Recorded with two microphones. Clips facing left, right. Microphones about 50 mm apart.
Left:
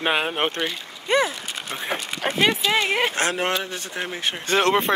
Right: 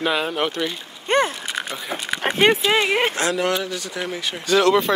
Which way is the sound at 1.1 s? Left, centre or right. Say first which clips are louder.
Right 2 dB; right.